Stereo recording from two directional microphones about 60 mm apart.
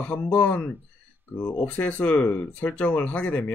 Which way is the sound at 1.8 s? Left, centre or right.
Left.